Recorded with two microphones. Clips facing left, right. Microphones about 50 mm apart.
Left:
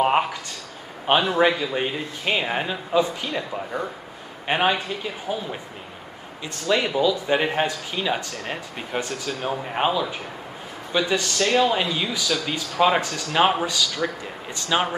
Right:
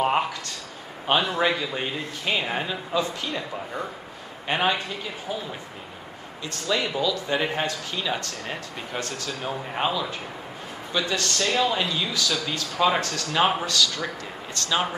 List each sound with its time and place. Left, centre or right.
0.0 s speech: centre
1.5 s speech: centre
2.2 s speech: centre
6.9 s speech: centre